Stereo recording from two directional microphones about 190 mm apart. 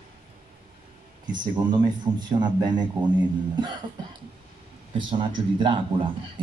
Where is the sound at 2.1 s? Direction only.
15° right (ahead or behind).